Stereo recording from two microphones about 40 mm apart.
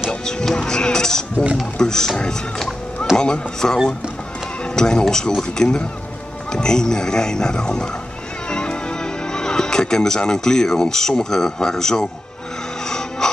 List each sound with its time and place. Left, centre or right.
0.1 s music: centre
0.7 s a sound: centre
1.8 s speech: centre
3.2 s speech: centre
4.7 s speech: centre
13.2 s music: centre